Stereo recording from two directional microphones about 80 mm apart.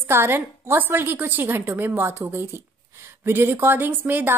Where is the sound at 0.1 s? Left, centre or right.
Right.